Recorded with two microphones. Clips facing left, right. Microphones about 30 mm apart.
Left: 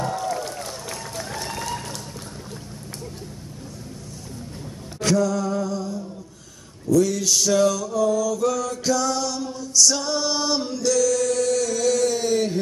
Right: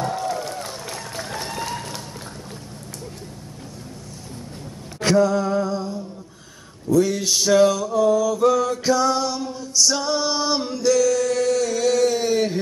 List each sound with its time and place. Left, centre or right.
0.0 s run: centre
1.6 s vehicle: centre
5.0 s a sound: right
6.9 s male singing: right